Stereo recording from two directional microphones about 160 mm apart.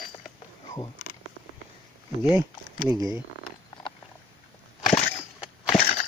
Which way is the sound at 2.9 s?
20° right (ahead or behind).